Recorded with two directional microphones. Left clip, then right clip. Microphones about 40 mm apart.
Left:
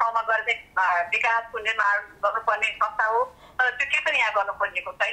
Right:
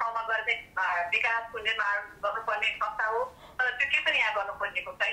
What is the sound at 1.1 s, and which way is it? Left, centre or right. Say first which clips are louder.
Speech: left 5 dB; left.